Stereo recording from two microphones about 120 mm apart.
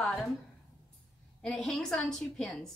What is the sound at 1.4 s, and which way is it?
A woman's voice, centre (ahead or behind).